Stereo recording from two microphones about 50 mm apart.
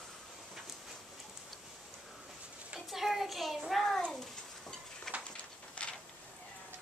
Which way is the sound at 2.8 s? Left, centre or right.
Centre.